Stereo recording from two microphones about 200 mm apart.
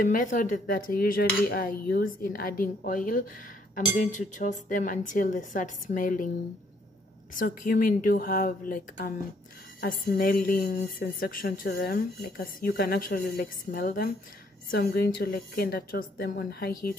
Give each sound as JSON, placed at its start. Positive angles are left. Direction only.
{"t": 0.0, "sound": "speech", "side_deg": 40}
{"t": 7.3, "sound": "speech", "side_deg": 45}